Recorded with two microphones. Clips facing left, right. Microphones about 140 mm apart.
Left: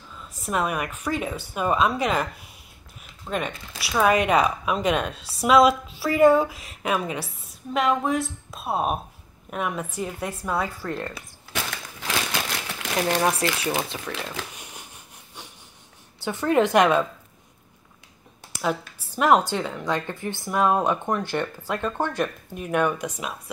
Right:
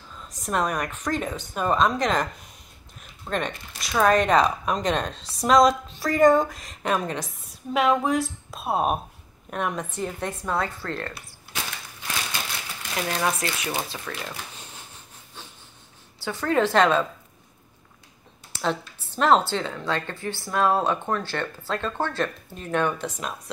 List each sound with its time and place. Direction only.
0.3 s speech: 5° left (ahead or behind)
12.3 s a sound: 90° left
12.9 s speech: 30° left (ahead or behind)
14.5 s a sound: 15° left (ahead or behind)
16.3 s speech: 20° left (ahead or behind)
18.6 s speech: 10° left (ahead or behind)